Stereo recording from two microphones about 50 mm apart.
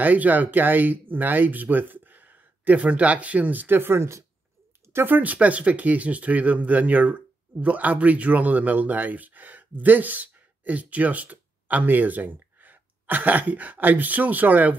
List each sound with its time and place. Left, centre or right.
0.0 s speech: right
3.7 s speech: right
5.0 s speech: right